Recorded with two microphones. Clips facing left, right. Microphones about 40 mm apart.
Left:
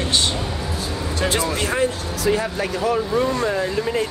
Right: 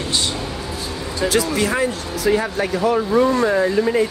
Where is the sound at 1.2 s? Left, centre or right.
Left.